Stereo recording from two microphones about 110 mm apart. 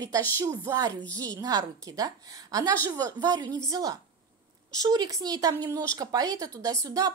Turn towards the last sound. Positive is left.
turn(degrees=-35)  # may be behind; listen again after turning